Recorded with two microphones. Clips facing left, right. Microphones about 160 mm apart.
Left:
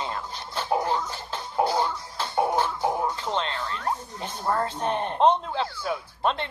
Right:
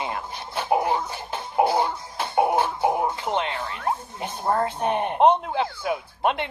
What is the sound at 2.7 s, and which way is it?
Music, 25° right (ahead or behind).